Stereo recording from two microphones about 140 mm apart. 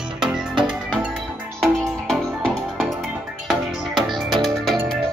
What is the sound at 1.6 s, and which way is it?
Music, centre (ahead or behind).